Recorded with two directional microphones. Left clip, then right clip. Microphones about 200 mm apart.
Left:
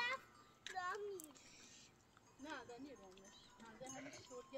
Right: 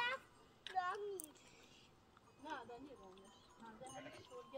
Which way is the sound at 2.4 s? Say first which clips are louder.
Right 2 dB; 50° left (ahead or behind).